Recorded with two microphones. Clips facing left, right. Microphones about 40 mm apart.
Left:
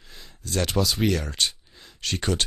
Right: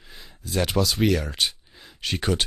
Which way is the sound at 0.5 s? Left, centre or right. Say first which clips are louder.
Right 1 dB; centre.